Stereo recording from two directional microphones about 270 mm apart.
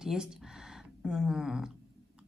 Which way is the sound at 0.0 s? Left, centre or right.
Centre.